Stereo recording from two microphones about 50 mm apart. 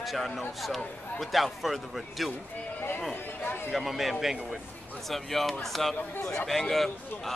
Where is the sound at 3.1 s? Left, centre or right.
Left.